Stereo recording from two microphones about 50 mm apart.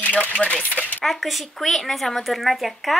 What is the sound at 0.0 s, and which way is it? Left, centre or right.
Speech, left.